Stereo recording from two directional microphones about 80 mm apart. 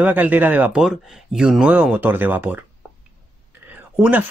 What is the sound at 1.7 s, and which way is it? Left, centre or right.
Speech, centre.